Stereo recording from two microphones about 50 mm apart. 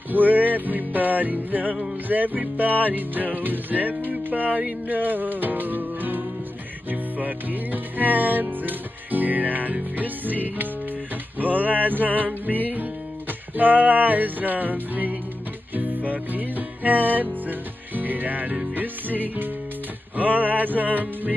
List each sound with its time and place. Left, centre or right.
0.1 s music: right
11.3 s a sound: right
12.4 s music: right